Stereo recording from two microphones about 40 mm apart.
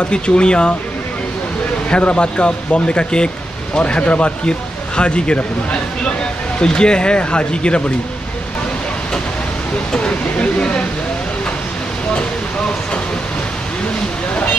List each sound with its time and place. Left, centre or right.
0.1 s speech: left
1.9 s speech: left
9.9 s speech: left